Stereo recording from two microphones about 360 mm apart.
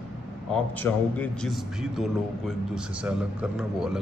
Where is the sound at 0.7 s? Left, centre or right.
Centre.